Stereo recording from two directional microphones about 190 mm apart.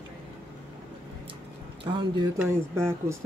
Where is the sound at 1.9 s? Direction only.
25° right (ahead or behind).